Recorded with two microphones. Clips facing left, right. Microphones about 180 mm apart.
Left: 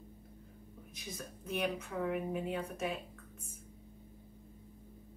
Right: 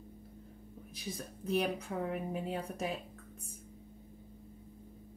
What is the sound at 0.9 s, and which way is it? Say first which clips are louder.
A woman's voice: right 3 dB; 35° right (ahead or behind).